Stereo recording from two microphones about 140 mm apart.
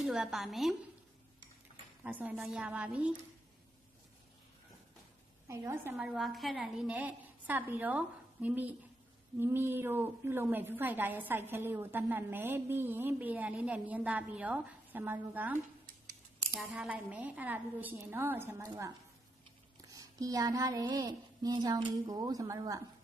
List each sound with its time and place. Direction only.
0.0 s a woman's voice: centre (ahead or behind)
2.0 s a woman's voice: 10° right (ahead or behind)
5.5 s speech: 20° right (ahead or behind)
5.9 s a woman's voice: centre (ahead or behind); by 22.8 s 25° right (ahead or behind)